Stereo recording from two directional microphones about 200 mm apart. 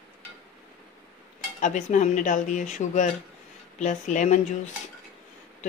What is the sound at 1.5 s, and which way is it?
Dishes, 40° left (ahead or behind).